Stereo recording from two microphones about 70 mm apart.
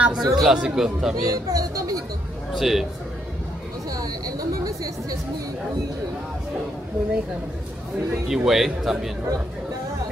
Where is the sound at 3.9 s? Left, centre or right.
Right.